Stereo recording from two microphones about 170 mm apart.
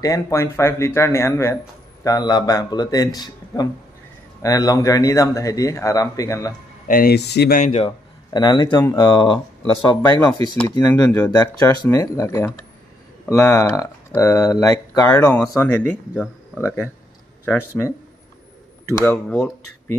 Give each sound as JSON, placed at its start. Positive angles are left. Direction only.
{"t": 0.0, "sound": "speech", "side_deg": 20}
{"t": 6.9, "sound": "speech", "side_deg": 65}
{"t": 7.5, "sound": "speech", "side_deg": 40}
{"t": 11.1, "sound": "speech", "side_deg": 10}
{"t": 18.9, "sound": "speech", "side_deg": 10}